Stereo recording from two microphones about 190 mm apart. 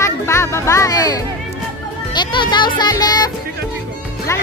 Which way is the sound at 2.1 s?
25° left (ahead or behind).